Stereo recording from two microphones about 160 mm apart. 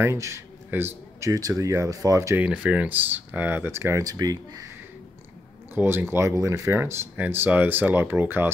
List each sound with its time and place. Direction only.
0.0 s speech: 15° right (ahead or behind)
2.4 s speech: 10° right (ahead or behind); by 4.6 s 25° right (ahead or behind)
5.8 s speech: 15° right (ahead or behind)